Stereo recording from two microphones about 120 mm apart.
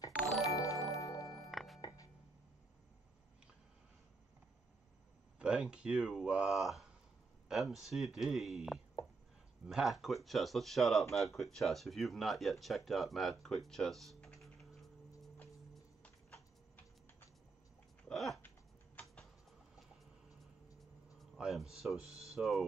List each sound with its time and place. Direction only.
0.5 s music: 30° left (ahead or behind)
1.5 s music: centre (ahead or behind)
1.8 s music: 35° left (ahead or behind)
5.4 s speech: 5° right (ahead or behind)
18.0 s a sound: centre (ahead or behind)
21.2 s a sound: centre (ahead or behind)
22.2 s speech: centre (ahead or behind)